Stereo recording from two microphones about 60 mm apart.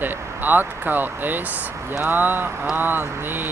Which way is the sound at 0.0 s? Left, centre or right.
Right.